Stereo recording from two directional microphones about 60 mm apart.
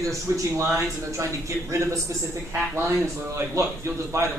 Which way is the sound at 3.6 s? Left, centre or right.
Right.